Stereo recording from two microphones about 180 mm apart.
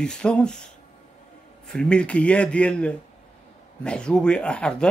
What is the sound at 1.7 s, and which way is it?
A man's voice, 5° left (ahead or behind).